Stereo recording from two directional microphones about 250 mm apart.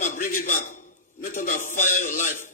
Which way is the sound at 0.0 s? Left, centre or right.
Left.